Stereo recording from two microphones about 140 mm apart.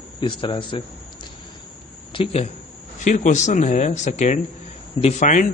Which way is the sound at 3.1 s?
60° left (ahead or behind).